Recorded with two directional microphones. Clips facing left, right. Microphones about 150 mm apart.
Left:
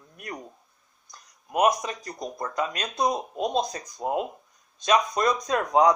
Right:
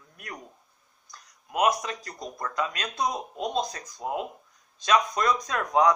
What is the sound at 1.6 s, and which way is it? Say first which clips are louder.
Speech: left 2 dB; 15° left (ahead or behind).